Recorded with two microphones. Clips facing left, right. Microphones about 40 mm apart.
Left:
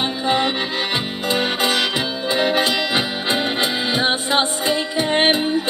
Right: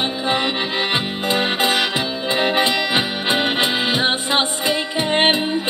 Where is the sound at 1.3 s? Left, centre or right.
Right.